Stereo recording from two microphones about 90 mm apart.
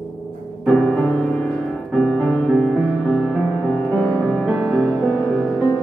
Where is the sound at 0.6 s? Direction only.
15° left (ahead or behind).